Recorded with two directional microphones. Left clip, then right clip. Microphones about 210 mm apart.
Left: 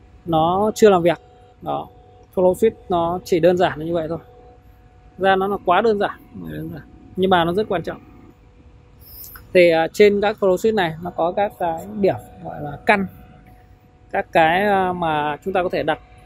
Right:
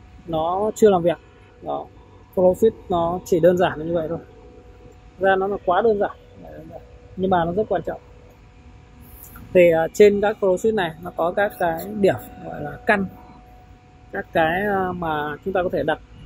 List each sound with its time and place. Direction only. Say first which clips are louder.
0.3 s speech: left 4 dB; 25° left (ahead or behind)
5.2 s speech: left 2 dB; 20° left (ahead or behind)
7.2 s speech: left 3 dB; 30° left (ahead or behind)
9.5 s speech: left 1 dB; 15° left (ahead or behind)
11.5 s speech: even; centre (ahead or behind)
12.0 s speech: even; 10° left (ahead or behind)
14.1 s speech: left 5 dB; 20° left (ahead or behind)